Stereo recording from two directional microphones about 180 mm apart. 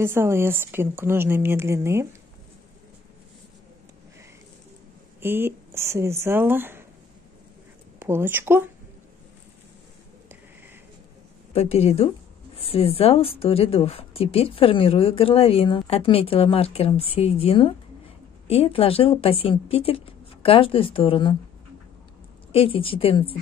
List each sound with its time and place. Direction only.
0.0 s a woman's voice: 15° right (ahead or behind)
5.2 s a woman's voice: 10° right (ahead or behind)
8.0 s a woman's voice: 10° right (ahead or behind)
11.5 s speech: 35° left (ahead or behind)
22.5 s speech: 30° left (ahead or behind)